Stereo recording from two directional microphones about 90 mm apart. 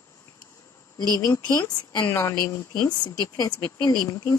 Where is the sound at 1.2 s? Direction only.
40° left (ahead or behind).